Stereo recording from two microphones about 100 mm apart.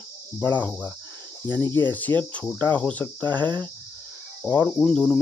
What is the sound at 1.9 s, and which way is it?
Cricket, 15° left (ahead or behind).